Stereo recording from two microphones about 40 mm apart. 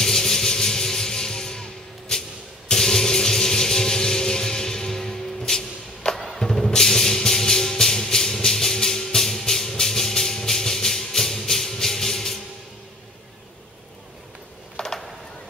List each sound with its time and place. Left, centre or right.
0.0 s music: centre
6.1 s music: centre
6.4 s music: centre
14.8 s a sound: centre